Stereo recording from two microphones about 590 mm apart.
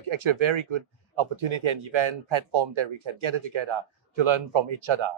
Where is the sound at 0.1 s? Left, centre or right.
Right.